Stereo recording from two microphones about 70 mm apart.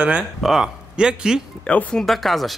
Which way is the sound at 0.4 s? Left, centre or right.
Centre.